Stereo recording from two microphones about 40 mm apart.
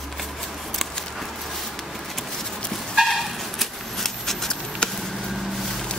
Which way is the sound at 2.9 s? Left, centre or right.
Centre.